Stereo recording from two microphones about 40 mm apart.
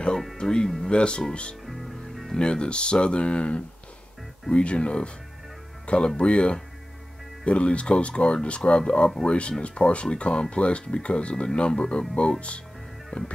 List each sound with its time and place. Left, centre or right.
0.4 s speech: centre
1.7 s music: centre
2.3 s speech: left